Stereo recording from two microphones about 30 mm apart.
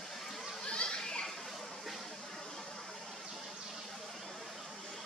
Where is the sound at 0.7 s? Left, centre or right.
Left.